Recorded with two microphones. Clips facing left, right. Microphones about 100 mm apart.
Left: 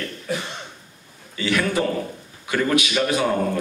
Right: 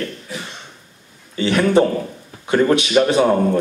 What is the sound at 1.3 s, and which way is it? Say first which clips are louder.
A man's voice: right 7 dB; 30° right (ahead or behind).